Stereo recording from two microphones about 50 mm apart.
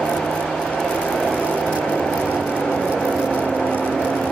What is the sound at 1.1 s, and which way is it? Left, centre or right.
Vehicle, centre.